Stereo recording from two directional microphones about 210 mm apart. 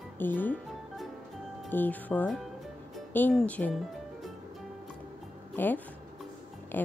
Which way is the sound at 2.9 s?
5° left (ahead or behind).